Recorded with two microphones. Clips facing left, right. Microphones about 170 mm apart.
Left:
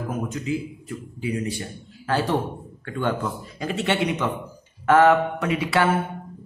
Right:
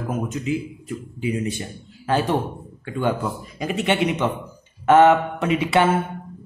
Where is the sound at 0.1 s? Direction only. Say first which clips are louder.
Right 3 dB; 20° right (ahead or behind).